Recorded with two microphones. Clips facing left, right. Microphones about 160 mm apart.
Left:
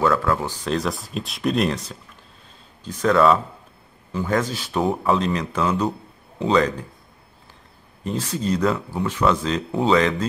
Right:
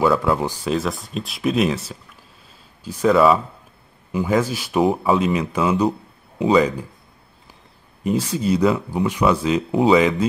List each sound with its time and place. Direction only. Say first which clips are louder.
0.0 s speech: right 2 dB; 15° right (ahead or behind)
0.7 s speech: even; centre (ahead or behind)
8.0 s speech: right 4 dB; 10° right (ahead or behind)